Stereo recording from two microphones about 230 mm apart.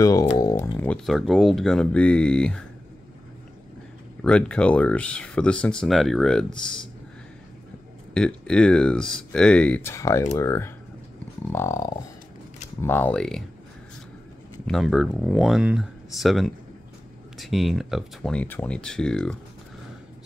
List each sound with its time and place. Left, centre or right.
0.0 s a sound: centre
0.4 s speech: centre
4.2 s speech: centre
8.1 s speech: centre
10.3 s a sound: centre
12.8 s speech: centre
14.7 s speech: centre